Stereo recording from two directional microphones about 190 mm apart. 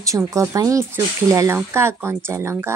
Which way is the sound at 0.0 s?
15° right (ahead or behind).